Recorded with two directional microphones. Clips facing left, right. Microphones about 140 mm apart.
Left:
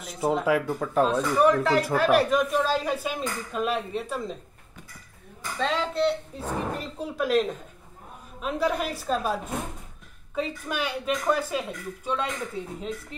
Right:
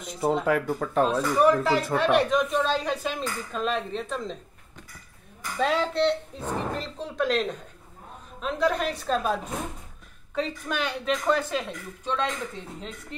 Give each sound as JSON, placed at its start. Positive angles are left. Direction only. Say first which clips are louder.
{"t": 0.0, "sound": "speech", "louder": "even", "side_deg": 0}
{"t": 5.6, "sound": "speech", "louder": "right 2 dB", "side_deg": -5}